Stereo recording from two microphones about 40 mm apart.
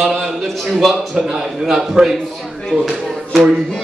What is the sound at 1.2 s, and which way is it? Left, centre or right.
Speech, centre.